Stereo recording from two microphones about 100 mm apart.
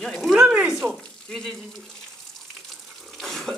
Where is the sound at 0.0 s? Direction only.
Centre (ahead or behind).